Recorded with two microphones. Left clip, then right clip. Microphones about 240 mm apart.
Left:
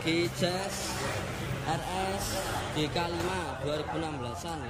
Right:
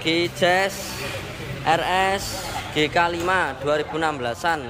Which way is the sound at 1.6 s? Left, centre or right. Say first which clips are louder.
Right 14 dB; right.